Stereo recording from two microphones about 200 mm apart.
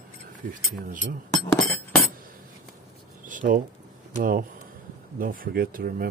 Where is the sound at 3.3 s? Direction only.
40° right (ahead or behind).